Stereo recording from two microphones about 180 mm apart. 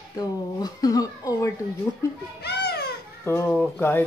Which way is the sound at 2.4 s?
65° left (ahead or behind).